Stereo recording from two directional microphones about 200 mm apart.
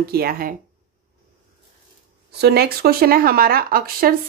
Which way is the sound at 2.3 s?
55° right (ahead or behind).